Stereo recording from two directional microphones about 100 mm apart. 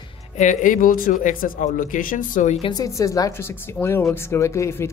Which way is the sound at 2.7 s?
35° left (ahead or behind).